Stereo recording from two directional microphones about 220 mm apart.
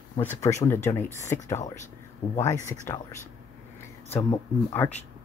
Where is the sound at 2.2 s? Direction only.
30° left (ahead or behind).